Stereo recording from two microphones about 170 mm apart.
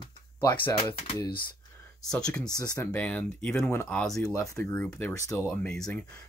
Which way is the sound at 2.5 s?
20° left (ahead or behind).